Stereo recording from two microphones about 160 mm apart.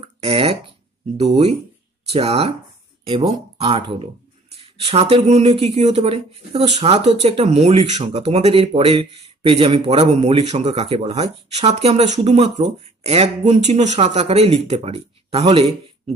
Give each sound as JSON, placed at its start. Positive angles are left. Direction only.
{"t": 0.0, "sound": "a sound", "side_deg": -35}
{"t": 1.1, "sound": "speech", "side_deg": -40}
{"t": 3.5, "sound": "speech", "side_deg": -35}